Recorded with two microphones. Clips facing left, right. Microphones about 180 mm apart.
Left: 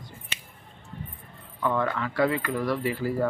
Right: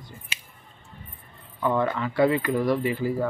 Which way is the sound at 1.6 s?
15° right (ahead or behind).